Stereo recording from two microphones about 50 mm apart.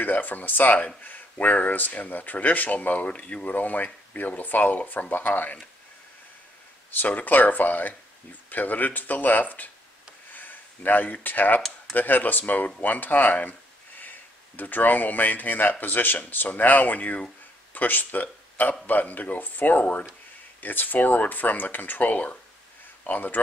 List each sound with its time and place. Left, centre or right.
0.0 s speech: left
6.9 s speech: left